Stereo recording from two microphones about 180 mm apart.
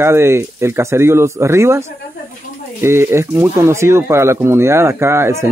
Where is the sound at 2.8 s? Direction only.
15° right (ahead or behind).